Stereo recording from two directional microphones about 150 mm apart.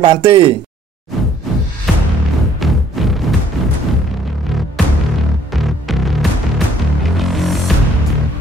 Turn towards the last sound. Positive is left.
turn(degrees=0)  # may be behind; listen again after turning